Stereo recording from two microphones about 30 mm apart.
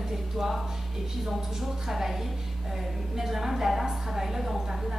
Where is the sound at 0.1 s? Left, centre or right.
Centre.